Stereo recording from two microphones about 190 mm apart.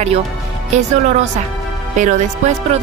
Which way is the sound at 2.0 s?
40° right (ahead or behind).